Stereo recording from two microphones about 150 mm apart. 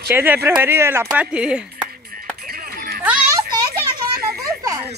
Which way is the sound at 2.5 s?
80° right.